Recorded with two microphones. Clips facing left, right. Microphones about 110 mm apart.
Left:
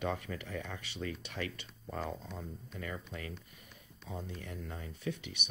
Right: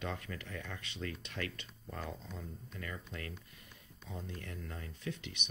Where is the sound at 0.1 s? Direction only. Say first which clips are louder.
Left 4 dB; 15° left (ahead or behind).